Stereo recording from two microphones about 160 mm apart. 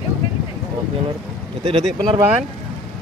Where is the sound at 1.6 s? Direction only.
30° right (ahead or behind).